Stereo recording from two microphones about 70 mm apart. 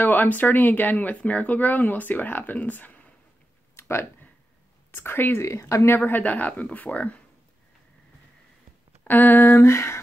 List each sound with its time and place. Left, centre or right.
0.0 s speech: left
3.7 s clicking: left
4.9 s speech: left
5.4 s speech: left
5.9 s speech: left
9.0 s speech: left